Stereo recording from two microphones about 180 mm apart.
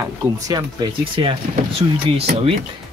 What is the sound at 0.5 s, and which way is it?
Speech, 20° right (ahead or behind).